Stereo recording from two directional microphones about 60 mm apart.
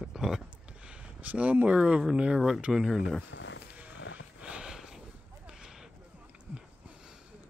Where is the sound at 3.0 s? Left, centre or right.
Centre.